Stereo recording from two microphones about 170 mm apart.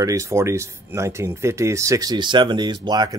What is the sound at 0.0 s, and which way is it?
Speech, 20° right (ahead or behind).